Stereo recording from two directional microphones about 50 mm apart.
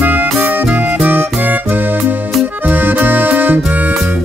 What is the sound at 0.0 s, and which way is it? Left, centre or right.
Music, right.